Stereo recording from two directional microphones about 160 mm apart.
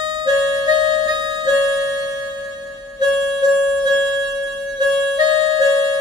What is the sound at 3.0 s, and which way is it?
Music, 25° right (ahead or behind).